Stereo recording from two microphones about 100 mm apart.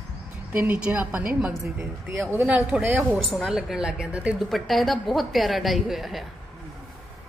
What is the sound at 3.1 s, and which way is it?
A woman's voice, centre (ahead or behind).